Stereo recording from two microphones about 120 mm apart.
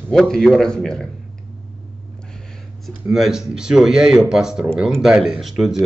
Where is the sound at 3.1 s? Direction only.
5° right (ahead or behind).